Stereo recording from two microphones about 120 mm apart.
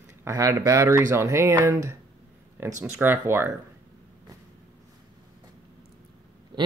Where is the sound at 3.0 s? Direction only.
20° right (ahead or behind).